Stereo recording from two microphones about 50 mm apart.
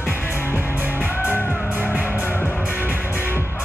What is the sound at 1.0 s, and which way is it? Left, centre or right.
Music, left.